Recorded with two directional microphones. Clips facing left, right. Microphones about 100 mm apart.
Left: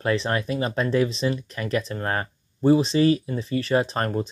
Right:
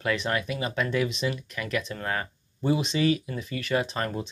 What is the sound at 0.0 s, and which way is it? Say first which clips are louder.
Speech: left 4 dB; 35° left (ahead or behind).